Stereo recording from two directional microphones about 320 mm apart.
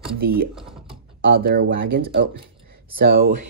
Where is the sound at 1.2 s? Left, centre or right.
Right.